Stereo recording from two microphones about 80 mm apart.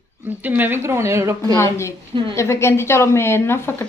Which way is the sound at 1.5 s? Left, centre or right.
Left.